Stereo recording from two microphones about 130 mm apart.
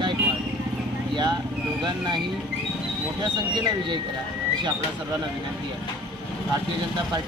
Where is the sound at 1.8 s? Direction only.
35° right (ahead or behind).